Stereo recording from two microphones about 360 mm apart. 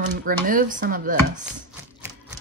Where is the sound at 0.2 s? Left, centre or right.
Right.